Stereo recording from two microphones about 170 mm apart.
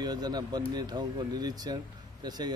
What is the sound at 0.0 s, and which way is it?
Speech, 25° right (ahead or behind).